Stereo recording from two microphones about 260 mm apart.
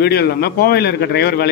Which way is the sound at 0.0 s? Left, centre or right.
Left.